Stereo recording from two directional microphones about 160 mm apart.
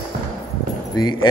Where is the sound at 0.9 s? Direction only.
25° left (ahead or behind).